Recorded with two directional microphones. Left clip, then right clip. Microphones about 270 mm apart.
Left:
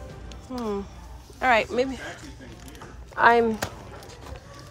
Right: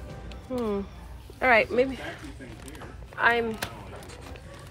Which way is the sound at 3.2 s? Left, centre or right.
Left.